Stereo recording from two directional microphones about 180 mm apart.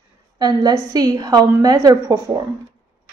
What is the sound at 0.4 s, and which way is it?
A woman's voice, 20° right (ahead or behind).